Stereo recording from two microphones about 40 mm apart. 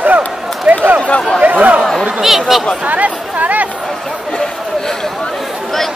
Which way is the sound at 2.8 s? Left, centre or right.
Right.